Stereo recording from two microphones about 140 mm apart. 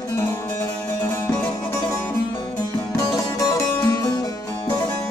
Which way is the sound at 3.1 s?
25° left (ahead or behind).